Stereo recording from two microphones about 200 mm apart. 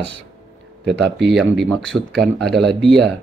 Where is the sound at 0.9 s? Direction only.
60° right (ahead or behind).